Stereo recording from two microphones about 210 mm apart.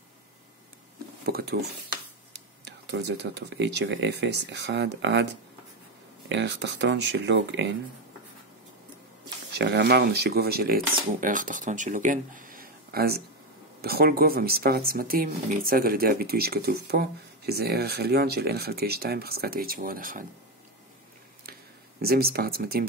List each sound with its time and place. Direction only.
1.2 s speech: 45° right (ahead or behind)
2.6 s speech: 55° right (ahead or behind)
9.5 s speech: 55° right (ahead or behind)
22.0 s speech: 45° right (ahead or behind)